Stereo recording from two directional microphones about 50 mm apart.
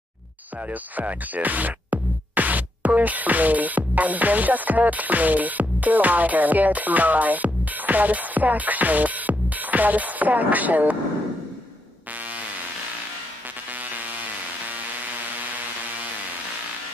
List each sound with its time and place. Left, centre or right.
0.7 s speech: right
13.8 s music: right